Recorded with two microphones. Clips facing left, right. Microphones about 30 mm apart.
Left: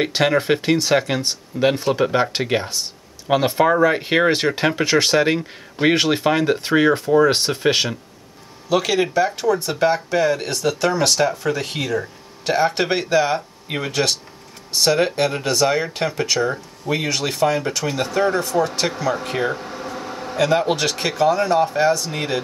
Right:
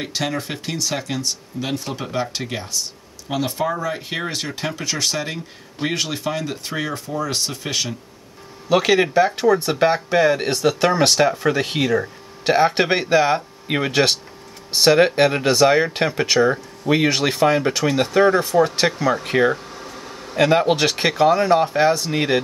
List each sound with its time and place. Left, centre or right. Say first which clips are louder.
0.0 s speech: left 7 dB; left
8.6 s speech: right 2 dB; centre
19.6 s a sound: left 5 dB; centre
20.3 s speech: right 2 dB; centre